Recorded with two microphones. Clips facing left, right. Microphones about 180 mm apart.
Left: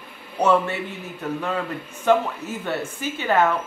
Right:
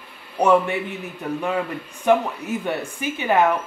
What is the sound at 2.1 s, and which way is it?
A man's voice, 15° right (ahead or behind).